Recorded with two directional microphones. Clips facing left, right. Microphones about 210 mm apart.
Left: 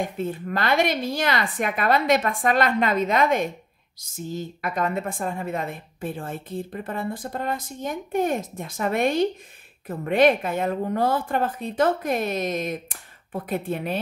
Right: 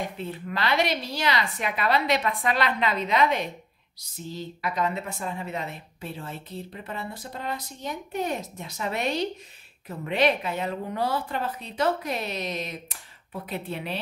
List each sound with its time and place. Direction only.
0.0 s a woman's voice: 50° left (ahead or behind)